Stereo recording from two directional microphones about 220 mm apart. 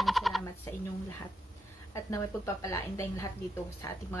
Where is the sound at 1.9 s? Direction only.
15° left (ahead or behind).